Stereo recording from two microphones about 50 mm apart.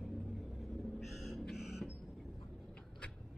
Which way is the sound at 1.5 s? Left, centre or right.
Centre.